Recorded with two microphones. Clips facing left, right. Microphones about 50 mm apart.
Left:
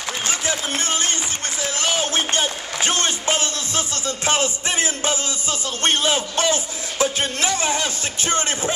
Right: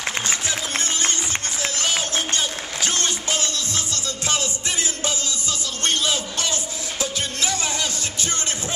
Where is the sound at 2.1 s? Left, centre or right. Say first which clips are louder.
Left 3 dB; left.